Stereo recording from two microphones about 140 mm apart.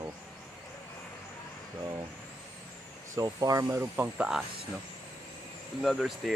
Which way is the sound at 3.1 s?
25° right (ahead or behind).